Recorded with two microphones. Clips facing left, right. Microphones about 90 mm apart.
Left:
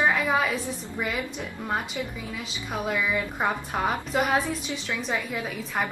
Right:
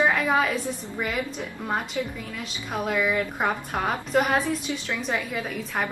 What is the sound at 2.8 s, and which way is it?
Speech, centre (ahead or behind).